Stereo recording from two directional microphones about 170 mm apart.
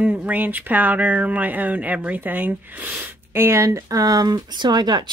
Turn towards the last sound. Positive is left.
turn(degrees=-25)  # may be behind; listen again after turning